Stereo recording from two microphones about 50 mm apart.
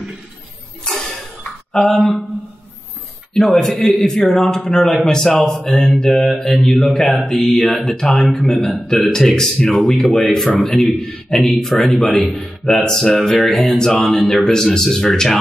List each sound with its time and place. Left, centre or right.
0.8 s a sound: centre
1.7 s speech: centre
3.3 s mantra: centre
4.0 s speech: centre
5.9 s mantra: centre
6.8 s speech: centre